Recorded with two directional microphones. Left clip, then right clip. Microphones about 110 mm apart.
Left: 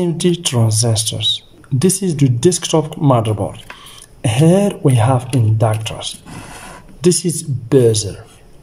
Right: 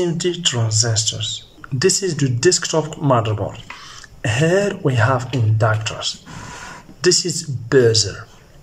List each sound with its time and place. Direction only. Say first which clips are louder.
0.0 s speech: left 2 dB; 40° left (ahead or behind)
1.8 s speech: left 1 dB; 25° left (ahead or behind)